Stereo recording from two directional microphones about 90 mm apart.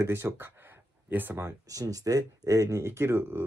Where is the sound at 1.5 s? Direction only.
40° right (ahead or behind).